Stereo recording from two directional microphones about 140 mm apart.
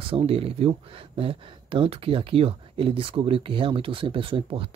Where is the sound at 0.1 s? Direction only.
45° right (ahead or behind).